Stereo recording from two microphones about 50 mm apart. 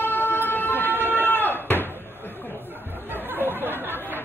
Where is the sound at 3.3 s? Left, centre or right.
Right.